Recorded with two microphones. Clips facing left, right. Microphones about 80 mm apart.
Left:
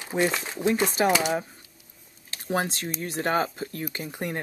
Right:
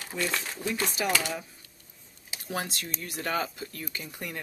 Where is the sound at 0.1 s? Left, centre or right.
Left.